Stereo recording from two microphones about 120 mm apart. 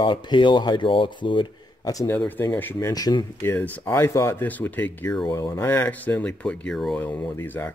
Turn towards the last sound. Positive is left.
turn(degrees=15)  # may be behind; listen again after turning